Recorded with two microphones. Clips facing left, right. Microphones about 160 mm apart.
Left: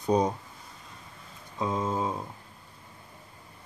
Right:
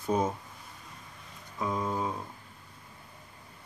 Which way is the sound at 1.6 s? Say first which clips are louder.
Left 2 dB; 20° left (ahead or behind).